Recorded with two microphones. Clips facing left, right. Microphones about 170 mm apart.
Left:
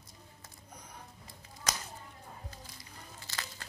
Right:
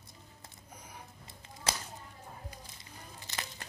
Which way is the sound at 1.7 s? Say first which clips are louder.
Right 1 dB; 30° right (ahead or behind).